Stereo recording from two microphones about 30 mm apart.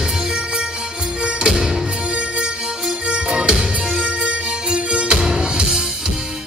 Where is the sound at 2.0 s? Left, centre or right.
Right.